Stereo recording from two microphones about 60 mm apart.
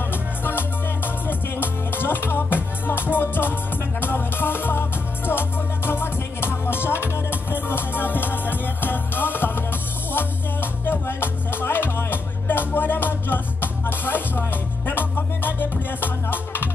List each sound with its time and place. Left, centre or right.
0.1 s music: left